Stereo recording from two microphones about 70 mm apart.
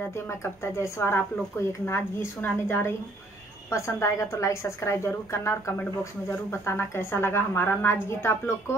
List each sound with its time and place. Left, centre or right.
0.1 s a woman's voice: left
3.7 s a woman's voice: left